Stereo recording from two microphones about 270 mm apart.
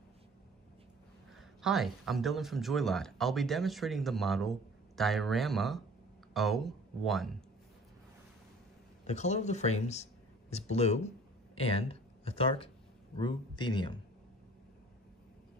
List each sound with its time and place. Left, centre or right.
1.6 s speech: centre
9.0 s speech: left